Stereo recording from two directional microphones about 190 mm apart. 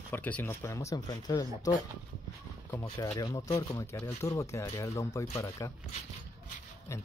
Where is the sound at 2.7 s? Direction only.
15° left (ahead or behind).